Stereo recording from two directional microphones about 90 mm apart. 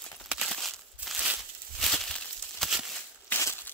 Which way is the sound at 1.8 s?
5° left (ahead or behind).